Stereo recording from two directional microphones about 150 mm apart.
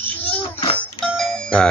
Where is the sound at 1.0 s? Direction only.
5° left (ahead or behind).